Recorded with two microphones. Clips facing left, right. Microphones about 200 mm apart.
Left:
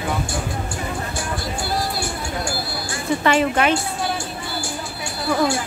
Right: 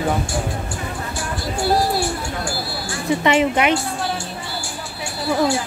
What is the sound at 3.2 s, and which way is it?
Speech, 20° right (ahead or behind).